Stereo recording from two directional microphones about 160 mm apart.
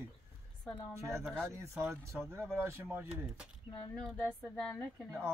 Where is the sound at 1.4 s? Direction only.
15° right (ahead or behind).